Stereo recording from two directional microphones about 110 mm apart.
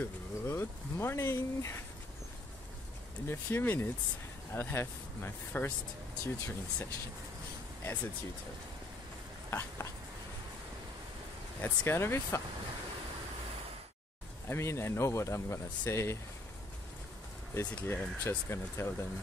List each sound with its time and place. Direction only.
0.0 s speech: 20° left (ahead or behind)
3.3 s speech: 20° left (ahead or behind)
9.5 s a sound: 20° left (ahead or behind)
11.6 s speech: 20° left (ahead or behind)
14.5 s speech: 25° left (ahead or behind)
17.6 s speech: 20° left (ahead or behind)